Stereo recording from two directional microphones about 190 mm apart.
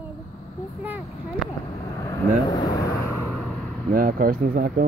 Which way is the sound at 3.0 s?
10° left (ahead or behind).